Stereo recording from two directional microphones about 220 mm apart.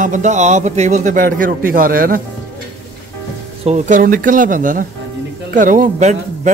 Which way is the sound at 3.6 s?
30° right (ahead or behind).